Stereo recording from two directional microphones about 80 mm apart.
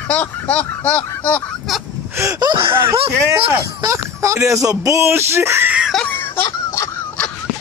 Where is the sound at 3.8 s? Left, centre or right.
Right.